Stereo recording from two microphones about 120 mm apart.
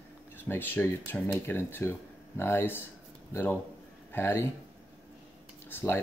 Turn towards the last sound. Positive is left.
turn(degrees=20)  # may be behind; listen again after turning